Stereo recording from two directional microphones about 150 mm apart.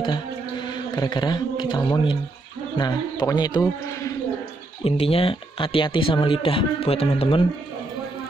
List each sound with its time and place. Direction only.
0.0 s a sound: 30° left (ahead or behind)
2.8 s a man's voice: 30° left (ahead or behind)
4.8 s speech: 40° left (ahead or behind)